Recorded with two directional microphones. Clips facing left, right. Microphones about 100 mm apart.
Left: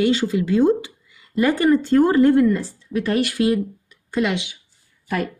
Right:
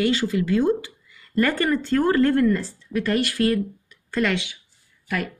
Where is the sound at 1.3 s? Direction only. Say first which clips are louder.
Left 4 dB; 10° left (ahead or behind).